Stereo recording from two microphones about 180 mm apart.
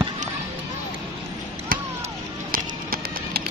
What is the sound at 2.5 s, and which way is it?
Music, 55° right (ahead or behind).